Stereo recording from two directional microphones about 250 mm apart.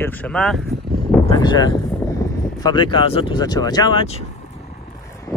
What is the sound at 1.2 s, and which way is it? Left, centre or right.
Speech, centre.